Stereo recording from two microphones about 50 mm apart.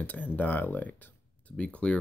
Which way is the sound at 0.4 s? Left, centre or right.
Left.